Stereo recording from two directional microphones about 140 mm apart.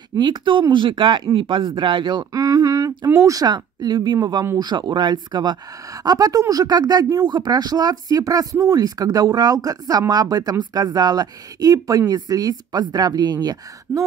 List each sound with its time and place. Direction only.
0.1 s speech: 30° right (ahead or behind)